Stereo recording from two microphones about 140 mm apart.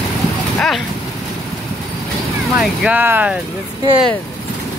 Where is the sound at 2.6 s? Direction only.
5° right (ahead or behind).